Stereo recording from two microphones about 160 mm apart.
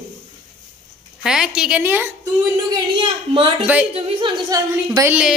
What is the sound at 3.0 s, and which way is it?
A woman's voice, 35° right (ahead or behind).